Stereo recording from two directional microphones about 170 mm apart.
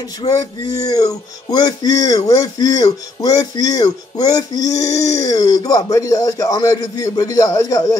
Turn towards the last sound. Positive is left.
turn(degrees=20)  # may be behind; listen again after turning